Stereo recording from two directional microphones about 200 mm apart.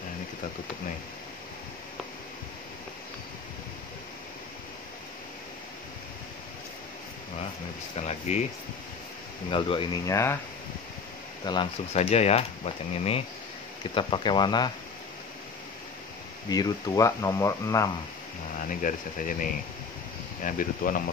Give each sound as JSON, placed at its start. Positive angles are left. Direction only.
{"t": 8.0, "sound": "speech", "side_deg": 35}
{"t": 9.5, "sound": "speech", "side_deg": 25}
{"t": 11.4, "sound": "speech", "side_deg": 25}
{"t": 16.4, "sound": "speech", "side_deg": 20}
{"t": 18.8, "sound": "speech", "side_deg": 40}